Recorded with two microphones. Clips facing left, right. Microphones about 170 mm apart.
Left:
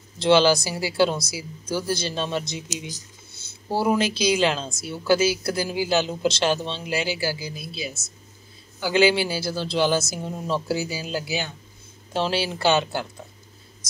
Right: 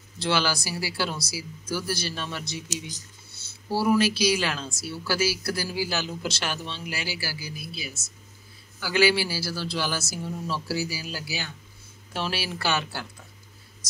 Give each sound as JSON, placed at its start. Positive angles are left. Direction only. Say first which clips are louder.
{"t": 0.2, "sound": "speech", "louder": "left 9 dB", "side_deg": 20}
{"t": 3.7, "sound": "speech", "louder": "even", "side_deg": 20}